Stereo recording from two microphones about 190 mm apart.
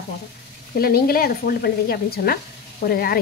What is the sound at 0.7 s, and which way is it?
Speech, 55° left (ahead or behind).